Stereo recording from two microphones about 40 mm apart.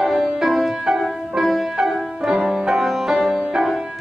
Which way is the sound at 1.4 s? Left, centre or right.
Centre.